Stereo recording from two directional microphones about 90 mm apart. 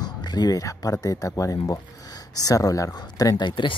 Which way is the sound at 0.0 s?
50° left (ahead or behind).